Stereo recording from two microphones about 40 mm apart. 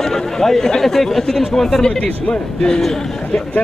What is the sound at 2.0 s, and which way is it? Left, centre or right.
Speech, left.